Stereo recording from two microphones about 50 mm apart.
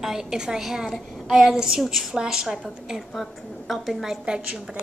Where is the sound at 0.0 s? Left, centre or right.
Centre.